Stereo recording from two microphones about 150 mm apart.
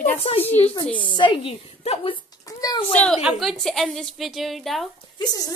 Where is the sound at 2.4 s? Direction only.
25° left (ahead or behind).